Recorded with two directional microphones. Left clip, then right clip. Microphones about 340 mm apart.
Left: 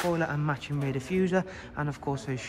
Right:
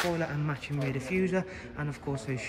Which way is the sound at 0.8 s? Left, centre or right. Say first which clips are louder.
Left 1 dB; left.